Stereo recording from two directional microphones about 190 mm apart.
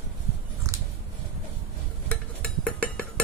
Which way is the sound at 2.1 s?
5° left (ahead or behind).